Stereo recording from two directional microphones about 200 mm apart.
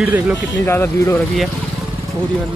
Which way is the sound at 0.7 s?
10° left (ahead or behind).